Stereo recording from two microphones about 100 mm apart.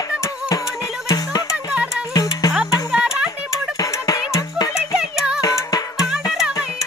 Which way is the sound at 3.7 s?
35° left (ahead or behind).